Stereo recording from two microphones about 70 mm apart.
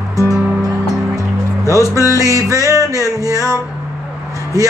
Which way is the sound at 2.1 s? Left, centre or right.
Right.